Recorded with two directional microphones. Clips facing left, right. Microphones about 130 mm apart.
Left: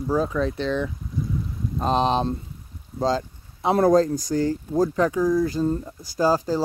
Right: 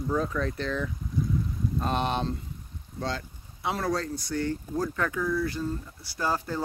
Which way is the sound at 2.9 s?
35° left (ahead or behind).